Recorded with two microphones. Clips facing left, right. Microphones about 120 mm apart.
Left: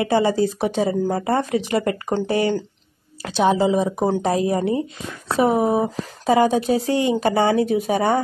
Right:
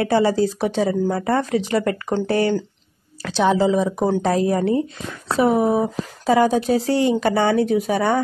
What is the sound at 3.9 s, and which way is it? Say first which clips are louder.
Speech: right 1 dB; 20° left (ahead or behind).